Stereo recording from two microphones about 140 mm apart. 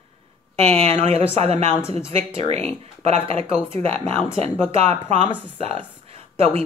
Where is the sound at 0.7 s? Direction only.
45° right (ahead or behind).